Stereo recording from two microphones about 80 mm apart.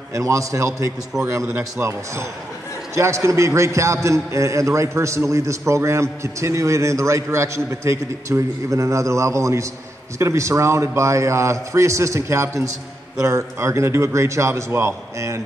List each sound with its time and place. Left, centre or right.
0.1 s a man's voice: right